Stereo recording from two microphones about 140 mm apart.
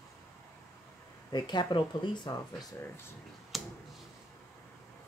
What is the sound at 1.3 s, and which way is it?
Speech, 30° left (ahead or behind).